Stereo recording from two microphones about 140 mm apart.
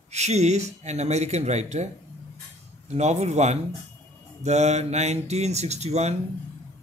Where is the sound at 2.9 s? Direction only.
55° right (ahead or behind).